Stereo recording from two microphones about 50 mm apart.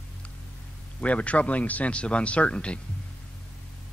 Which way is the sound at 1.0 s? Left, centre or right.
Left.